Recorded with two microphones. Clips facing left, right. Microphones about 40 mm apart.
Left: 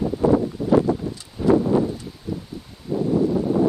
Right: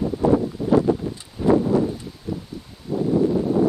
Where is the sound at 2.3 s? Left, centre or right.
Centre.